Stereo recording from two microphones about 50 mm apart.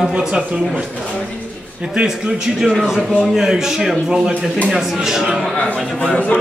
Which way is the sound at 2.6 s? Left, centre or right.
Centre.